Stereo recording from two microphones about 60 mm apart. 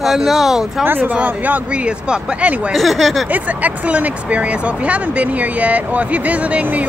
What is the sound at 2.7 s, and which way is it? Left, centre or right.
Laughter, centre.